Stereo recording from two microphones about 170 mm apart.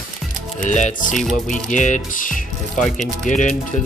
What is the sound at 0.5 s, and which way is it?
Speech, 45° left (ahead or behind).